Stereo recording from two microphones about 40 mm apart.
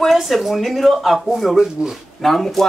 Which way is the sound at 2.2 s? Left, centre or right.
Centre.